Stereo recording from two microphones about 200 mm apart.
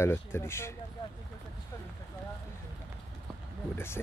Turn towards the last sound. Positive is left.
turn(degrees=10)  # may be behind; listen again after turning